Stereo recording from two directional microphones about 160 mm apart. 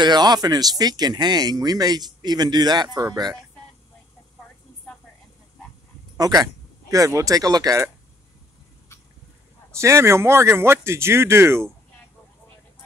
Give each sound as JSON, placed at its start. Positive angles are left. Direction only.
{"t": 0.0, "sound": "speech", "side_deg": -25}
{"t": 6.1, "sound": "speech", "side_deg": -25}
{"t": 9.8, "sound": "speech", "side_deg": -15}